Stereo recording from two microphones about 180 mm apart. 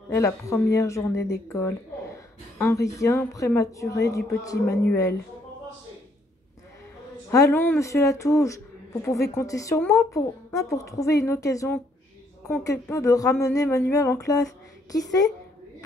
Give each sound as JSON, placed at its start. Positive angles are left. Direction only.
{"t": 0.1, "sound": "a woman's voice", "side_deg": 15}
{"t": 7.2, "sound": "a woman's voice", "side_deg": 15}
{"t": 12.9, "sound": "speech", "side_deg": 20}